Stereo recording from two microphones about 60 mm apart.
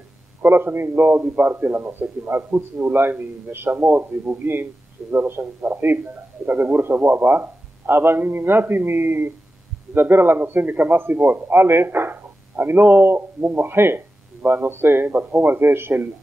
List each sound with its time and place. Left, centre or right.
0.4 s a man's voice: right